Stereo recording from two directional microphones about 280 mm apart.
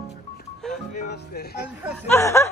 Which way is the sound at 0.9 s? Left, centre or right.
Left.